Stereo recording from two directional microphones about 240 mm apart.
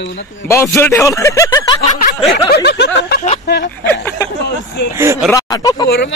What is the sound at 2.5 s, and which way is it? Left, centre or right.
Speech, left.